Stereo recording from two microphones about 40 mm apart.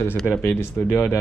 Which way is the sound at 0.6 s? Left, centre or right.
Left.